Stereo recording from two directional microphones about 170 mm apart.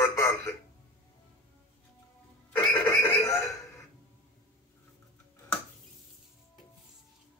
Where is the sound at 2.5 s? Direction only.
15° left (ahead or behind).